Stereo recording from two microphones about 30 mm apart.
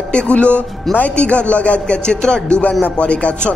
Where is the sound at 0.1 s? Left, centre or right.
Left.